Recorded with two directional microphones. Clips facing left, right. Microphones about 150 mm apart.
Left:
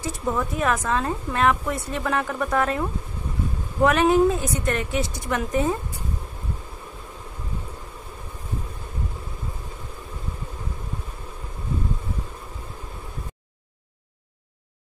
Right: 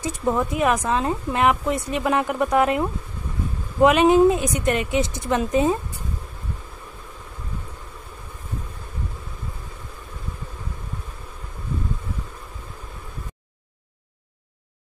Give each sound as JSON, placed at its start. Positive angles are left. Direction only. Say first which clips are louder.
{"t": 0.0, "sound": "a woman's voice", "louder": "right 3 dB", "side_deg": -20}